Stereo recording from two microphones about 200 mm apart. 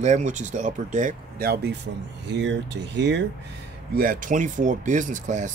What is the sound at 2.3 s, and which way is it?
Speech, 60° right (ahead or behind).